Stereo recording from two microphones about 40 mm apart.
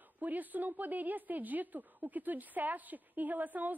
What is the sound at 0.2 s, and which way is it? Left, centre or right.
A woman's voice, right.